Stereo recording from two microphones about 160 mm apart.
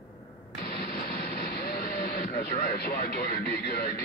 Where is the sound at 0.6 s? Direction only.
70° left (ahead or behind).